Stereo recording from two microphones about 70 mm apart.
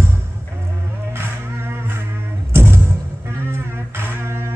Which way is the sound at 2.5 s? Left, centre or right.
Right.